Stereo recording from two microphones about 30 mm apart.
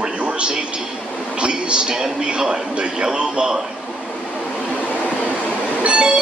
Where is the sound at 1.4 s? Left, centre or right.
Right.